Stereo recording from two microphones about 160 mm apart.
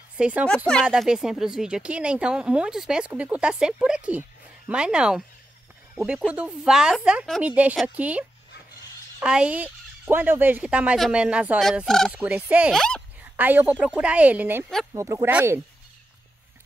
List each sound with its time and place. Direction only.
0.2 s speech: 10° right (ahead or behind)
12.7 s speech: 5° left (ahead or behind)
13.2 s speech: 10° right (ahead or behind)